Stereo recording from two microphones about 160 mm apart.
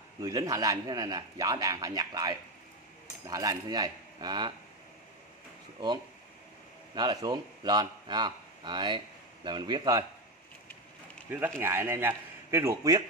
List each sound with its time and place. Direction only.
0.2 s speech: 20° right (ahead or behind)
7.0 s speech: 25° right (ahead or behind)
11.2 s a man's voice: 10° right (ahead or behind)